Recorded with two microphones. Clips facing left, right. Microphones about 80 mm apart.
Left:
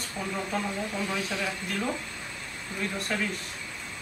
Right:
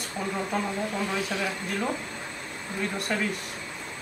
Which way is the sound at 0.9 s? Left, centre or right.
Centre.